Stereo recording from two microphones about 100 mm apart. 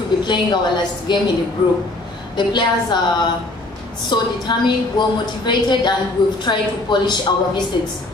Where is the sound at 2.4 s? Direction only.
50° left (ahead or behind).